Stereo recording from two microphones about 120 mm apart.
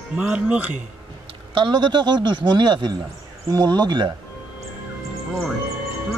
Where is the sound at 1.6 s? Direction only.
40° right (ahead or behind).